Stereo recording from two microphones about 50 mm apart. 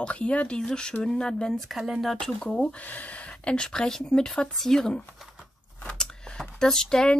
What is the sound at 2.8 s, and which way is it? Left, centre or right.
Speech, left.